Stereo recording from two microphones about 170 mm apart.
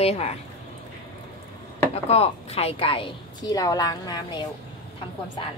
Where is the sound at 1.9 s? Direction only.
35° left (ahead or behind).